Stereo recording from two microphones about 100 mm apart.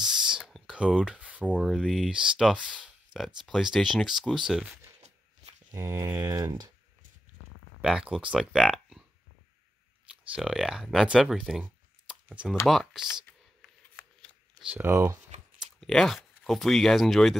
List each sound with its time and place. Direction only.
0.0 s a sound: 5° right (ahead or behind)
1.0 s speech: 10° right (ahead or behind)
1.6 s speech: centre (ahead or behind)
5.8 s typing: 25° right (ahead or behind)
7.8 s speech: 10° right (ahead or behind)
10.0 s speech: 5° right (ahead or behind)
12.1 s a sound: 10° right (ahead or behind)
12.6 s speech: centre (ahead or behind)
13.2 s shuffling cards: 15° left (ahead or behind)
14.7 s typing: 20° right (ahead or behind)
15.8 s speech: 5° left (ahead or behind)